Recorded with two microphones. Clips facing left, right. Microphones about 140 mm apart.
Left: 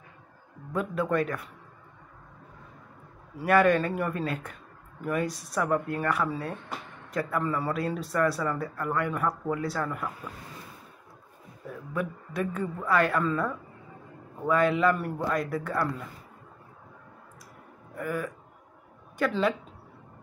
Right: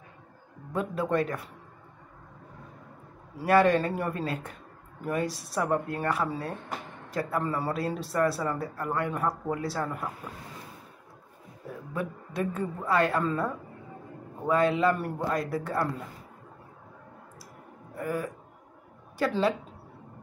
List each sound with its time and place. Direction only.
0.7 s speech: 30° right (ahead or behind)
3.4 s speech: 30° right (ahead or behind)
11.6 s speech: 30° right (ahead or behind)
17.9 s a woman's voice: 30° right (ahead or behind)